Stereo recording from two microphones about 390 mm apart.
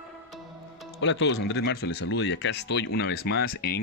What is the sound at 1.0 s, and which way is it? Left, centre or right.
Speech, left.